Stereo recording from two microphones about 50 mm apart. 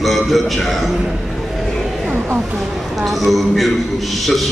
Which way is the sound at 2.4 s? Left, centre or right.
Centre.